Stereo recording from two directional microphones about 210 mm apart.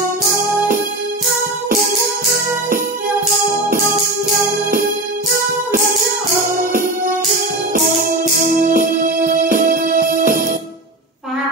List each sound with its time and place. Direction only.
8.5 s music: 40° right (ahead or behind)